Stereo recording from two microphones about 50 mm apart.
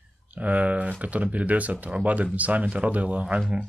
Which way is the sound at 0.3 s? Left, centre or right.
Right.